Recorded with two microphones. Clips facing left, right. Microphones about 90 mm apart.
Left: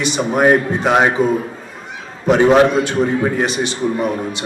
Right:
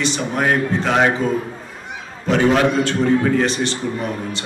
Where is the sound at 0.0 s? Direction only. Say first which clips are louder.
Left 5 dB; 15° left (ahead or behind).